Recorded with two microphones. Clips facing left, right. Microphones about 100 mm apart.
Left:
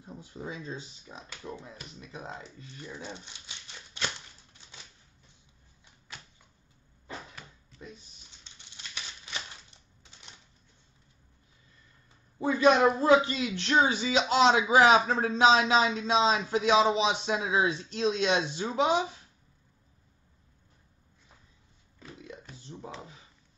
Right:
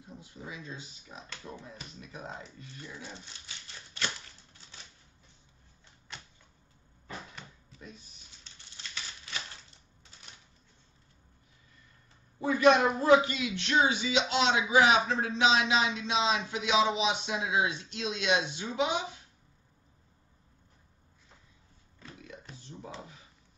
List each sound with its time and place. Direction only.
0.0 s a sound: 35° left (ahead or behind)
1.3 s speech: 15° left (ahead or behind)
8.5 s typewriter: 15° left (ahead or behind)
12.4 s a man's voice: 25° left (ahead or behind)
13.3 s a man's voice: 40° left (ahead or behind)
22.7 s a sound: 25° left (ahead or behind)